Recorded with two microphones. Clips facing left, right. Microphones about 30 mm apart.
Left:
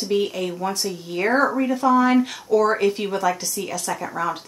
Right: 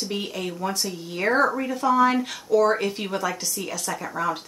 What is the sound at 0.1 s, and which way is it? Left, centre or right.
Speech, centre.